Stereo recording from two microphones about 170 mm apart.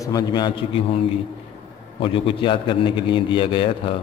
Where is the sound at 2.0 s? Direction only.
30° left (ahead or behind).